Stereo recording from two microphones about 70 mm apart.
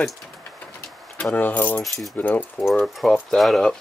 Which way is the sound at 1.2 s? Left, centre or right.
Left.